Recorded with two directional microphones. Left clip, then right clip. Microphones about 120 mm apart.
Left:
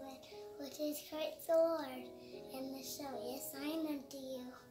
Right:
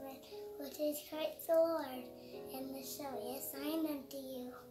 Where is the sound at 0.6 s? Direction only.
5° left (ahead or behind).